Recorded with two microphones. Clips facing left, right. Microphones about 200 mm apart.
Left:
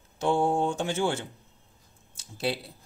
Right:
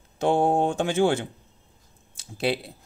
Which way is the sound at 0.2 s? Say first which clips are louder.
Right 4 dB; 60° right (ahead or behind).